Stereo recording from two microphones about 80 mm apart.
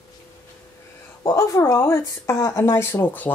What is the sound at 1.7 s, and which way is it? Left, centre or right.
Speech, left.